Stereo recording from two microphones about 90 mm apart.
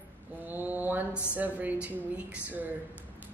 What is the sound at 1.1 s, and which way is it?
Speech, 25° left (ahead or behind).